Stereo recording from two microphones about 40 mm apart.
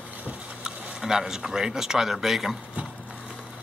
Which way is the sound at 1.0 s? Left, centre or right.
Centre.